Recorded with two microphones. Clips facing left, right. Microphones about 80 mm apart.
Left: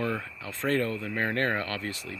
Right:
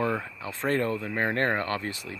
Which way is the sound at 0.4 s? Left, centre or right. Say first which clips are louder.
Left 1 dB; centre.